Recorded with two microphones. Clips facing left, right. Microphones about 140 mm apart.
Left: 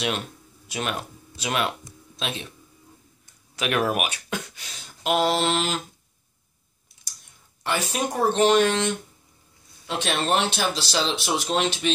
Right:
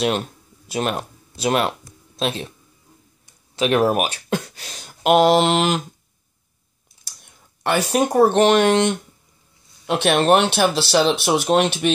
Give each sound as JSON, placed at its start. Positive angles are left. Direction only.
{"t": 0.7, "sound": "speech", "side_deg": -40}
{"t": 3.5, "sound": "speech", "side_deg": -30}
{"t": 5.0, "sound": "mantra", "side_deg": -65}
{"t": 7.2, "sound": "speech", "side_deg": -60}